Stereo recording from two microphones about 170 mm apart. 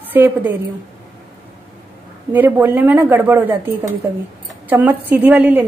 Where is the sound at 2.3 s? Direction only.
10° right (ahead or behind).